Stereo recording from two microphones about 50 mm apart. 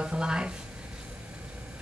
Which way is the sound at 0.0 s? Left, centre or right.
Centre.